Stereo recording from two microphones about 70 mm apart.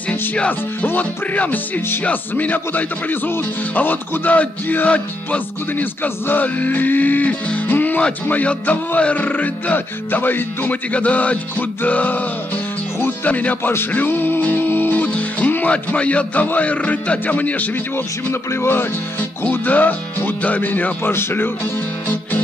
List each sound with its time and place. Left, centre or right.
0.1 s speech: left
13.0 s music: left
17.9 s speech: left
19.4 s speech: left